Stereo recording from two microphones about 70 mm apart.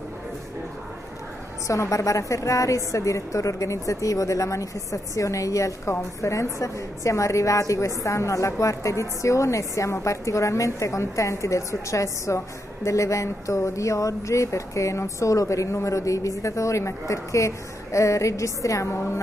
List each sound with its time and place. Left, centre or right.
1.7 s a woman's voice: left